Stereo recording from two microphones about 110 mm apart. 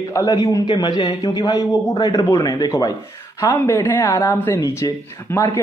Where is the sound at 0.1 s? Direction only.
30° left (ahead or behind).